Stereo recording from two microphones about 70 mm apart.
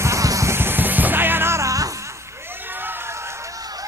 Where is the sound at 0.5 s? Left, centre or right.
Right.